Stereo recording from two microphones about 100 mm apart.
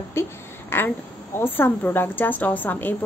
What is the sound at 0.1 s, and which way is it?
A woman's voice, 25° left (ahead or behind).